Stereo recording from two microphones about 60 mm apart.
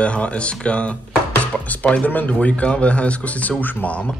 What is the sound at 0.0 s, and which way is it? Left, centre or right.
A man's voice, left.